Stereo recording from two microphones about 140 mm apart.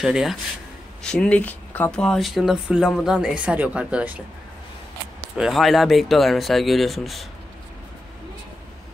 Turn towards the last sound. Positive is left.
turn(degrees=0)  # may be behind; listen again after turning